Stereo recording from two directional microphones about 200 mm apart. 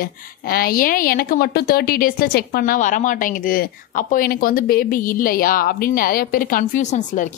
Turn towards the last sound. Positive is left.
turn(degrees=35)  # may be behind; listen again after turning